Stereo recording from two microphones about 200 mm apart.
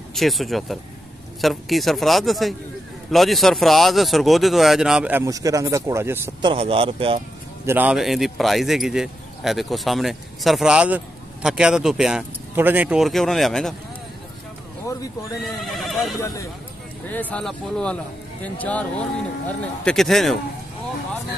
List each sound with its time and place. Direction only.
0.1 s speech: centre (ahead or behind)
6.4 s a man's voice: 30° right (ahead or behind)
7.6 s speech: 10° right (ahead or behind)
14.9 s speech: 15° left (ahead or behind)
15.6 s speech: centre (ahead or behind)
16.2 s speech: 15° left (ahead or behind)